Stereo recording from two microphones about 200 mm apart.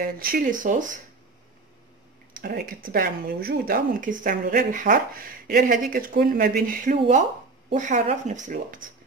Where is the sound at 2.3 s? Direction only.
45° right (ahead or behind).